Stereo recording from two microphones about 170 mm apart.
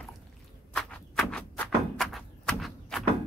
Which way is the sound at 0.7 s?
5° left (ahead or behind).